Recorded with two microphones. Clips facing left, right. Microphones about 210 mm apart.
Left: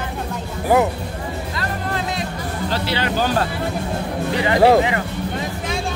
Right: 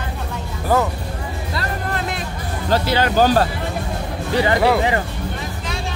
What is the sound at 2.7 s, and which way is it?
Speech, 45° right (ahead or behind).